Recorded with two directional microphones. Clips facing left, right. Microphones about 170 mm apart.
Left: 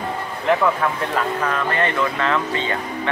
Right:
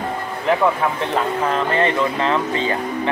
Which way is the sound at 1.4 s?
25° right (ahead or behind).